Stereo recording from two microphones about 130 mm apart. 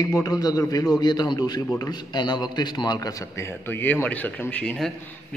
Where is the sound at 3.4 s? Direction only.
15° left (ahead or behind).